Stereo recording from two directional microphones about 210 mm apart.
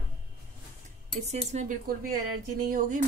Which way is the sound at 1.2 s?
30° right (ahead or behind).